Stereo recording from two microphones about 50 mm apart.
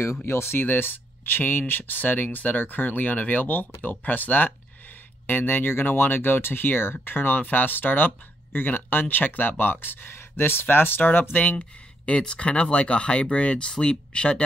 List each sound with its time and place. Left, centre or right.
0.2 s speech: left
11.3 s speech: left